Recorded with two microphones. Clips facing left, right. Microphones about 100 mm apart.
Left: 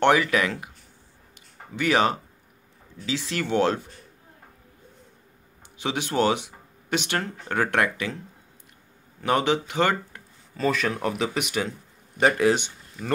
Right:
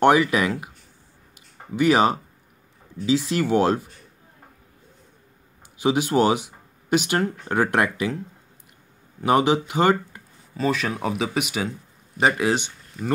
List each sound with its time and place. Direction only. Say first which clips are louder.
0.0 s speech: right 3 dB; 15° right (ahead or behind)
1.8 s speech: right 4 dB; 15° right (ahead or behind)
3.3 s speech: even; 10° right (ahead or behind)
5.8 s speech: right 5 dB; 10° right (ahead or behind)
9.2 s speech: right 4 dB; 15° right (ahead or behind)